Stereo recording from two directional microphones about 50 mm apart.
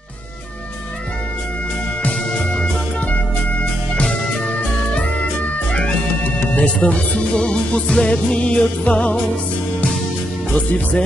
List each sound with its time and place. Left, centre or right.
2.3 s organ: centre
3.9 s music: centre
5.7 s speech: left
10.5 s speech: left